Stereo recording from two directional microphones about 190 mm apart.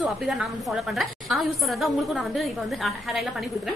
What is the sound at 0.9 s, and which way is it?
Speech, centre (ahead or behind).